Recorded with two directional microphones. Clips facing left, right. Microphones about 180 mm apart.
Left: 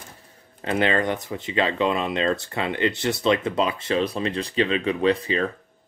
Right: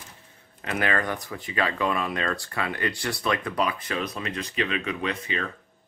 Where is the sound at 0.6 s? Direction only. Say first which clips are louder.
Left 5 dB; 30° left (ahead or behind).